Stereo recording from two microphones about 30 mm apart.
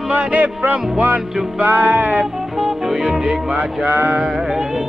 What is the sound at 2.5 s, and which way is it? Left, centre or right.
Music, centre.